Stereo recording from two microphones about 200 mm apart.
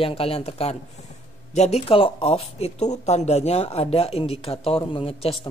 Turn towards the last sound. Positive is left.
turn(degrees=30)  # may be behind; listen again after turning